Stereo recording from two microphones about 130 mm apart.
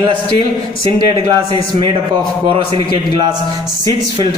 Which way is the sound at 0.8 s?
40° right (ahead or behind).